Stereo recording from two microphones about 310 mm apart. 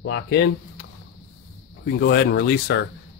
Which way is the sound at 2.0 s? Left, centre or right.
Left.